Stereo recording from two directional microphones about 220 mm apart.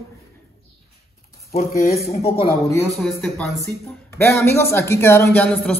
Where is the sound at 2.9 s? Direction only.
5° left (ahead or behind).